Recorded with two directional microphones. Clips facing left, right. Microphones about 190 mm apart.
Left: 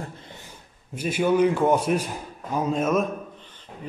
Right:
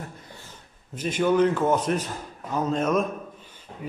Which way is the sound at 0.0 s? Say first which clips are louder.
Left 2 dB; 25° left (ahead or behind).